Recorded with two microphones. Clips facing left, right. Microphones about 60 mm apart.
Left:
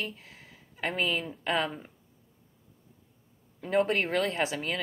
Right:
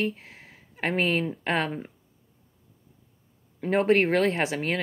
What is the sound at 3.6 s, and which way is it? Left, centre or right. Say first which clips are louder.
Speech: right 5 dB; right.